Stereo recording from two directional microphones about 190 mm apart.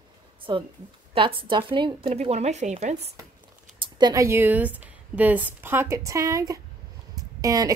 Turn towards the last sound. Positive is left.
turn(degrees=-20)  # may be behind; listen again after turning